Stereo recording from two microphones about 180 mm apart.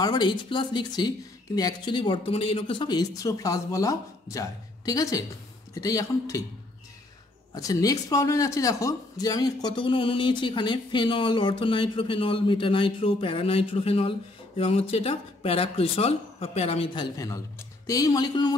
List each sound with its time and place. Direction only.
0.0 s speech: 25° left (ahead or behind)
7.5 s speech: 20° left (ahead or behind)